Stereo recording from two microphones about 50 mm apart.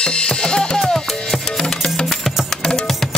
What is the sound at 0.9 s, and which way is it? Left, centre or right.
Music, centre.